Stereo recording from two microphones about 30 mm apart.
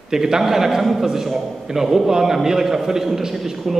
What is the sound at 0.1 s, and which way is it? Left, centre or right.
A man's voice, centre.